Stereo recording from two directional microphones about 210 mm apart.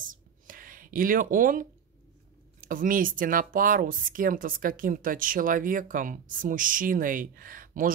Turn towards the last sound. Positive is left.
turn(degrees=-40)  # may be behind; listen again after turning